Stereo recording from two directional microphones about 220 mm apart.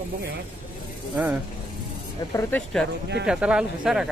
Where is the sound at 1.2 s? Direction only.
10° right (ahead or behind).